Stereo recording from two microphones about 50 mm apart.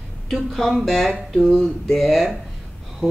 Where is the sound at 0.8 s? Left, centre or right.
Centre.